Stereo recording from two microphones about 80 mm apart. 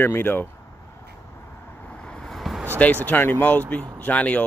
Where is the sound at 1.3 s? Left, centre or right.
Left; by 2.6 s centre.